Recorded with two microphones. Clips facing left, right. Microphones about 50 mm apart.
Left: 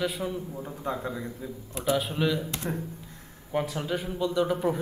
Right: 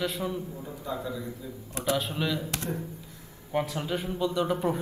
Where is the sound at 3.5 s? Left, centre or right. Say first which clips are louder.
Even; centre.